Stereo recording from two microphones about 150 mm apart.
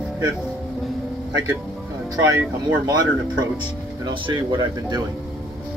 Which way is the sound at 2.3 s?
15° right (ahead or behind).